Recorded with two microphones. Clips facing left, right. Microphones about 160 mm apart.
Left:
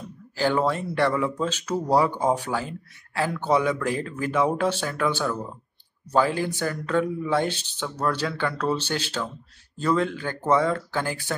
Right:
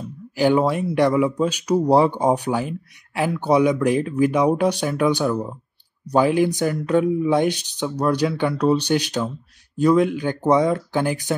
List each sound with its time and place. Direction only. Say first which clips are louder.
0.4 s speech: right 5 dB; 15° right (ahead or behind)